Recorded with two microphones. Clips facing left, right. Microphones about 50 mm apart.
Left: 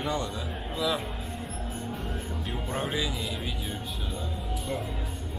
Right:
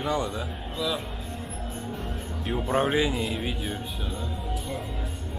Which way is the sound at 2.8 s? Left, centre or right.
Right.